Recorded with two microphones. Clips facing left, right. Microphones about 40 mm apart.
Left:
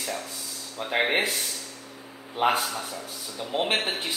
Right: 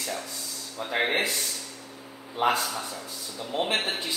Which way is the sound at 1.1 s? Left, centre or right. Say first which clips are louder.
Left 1 dB; left.